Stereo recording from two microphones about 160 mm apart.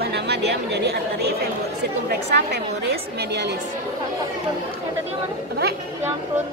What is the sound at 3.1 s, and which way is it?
Speech, 90° right.